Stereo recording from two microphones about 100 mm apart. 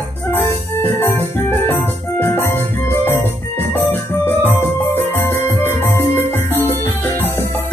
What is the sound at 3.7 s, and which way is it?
Music, 20° left (ahead or behind).